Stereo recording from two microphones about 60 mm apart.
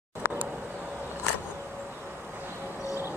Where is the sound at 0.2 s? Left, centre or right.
Right.